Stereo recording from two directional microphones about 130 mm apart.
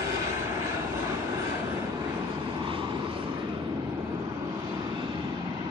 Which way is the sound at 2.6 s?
40° right (ahead or behind).